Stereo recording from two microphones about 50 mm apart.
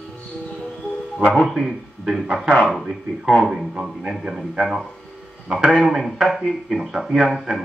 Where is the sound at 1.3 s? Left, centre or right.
Centre.